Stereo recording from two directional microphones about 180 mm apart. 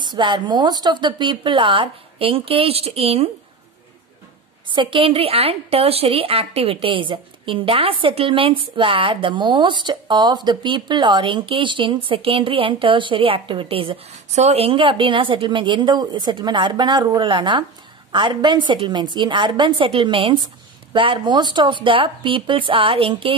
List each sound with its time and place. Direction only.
0.0 s a woman's voice: 25° right (ahead or behind)
4.6 s a woman's voice: 25° right (ahead or behind)